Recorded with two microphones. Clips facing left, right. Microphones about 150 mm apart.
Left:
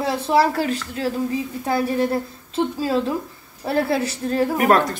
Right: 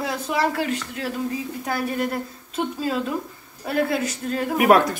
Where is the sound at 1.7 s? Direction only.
25° left (ahead or behind).